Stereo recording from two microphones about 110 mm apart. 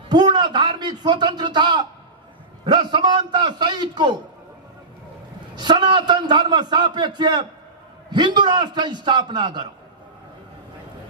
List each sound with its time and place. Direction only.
0.1 s a sound: 40° right (ahead or behind)
2.6 s a man's voice: 40° right (ahead or behind)
5.6 s a man's voice: 40° right (ahead or behind)